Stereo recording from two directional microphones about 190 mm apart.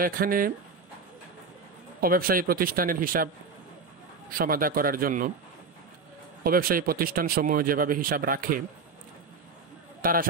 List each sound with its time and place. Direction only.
0.0 s speech: 50° right (ahead or behind)
2.0 s speech: 50° right (ahead or behind)
4.4 s speech: 50° right (ahead or behind)
6.4 s speech: 50° right (ahead or behind)
10.0 s speech: 50° right (ahead or behind)